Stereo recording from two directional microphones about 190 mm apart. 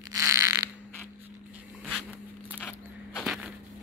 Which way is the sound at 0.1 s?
15° right (ahead or behind).